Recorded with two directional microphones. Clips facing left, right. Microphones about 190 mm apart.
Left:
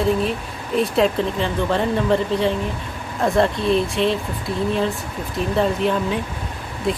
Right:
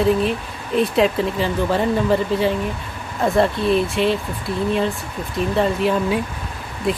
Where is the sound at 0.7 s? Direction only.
Centre (ahead or behind).